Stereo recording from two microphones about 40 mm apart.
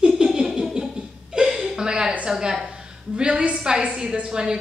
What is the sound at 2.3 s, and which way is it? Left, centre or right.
Speech, centre.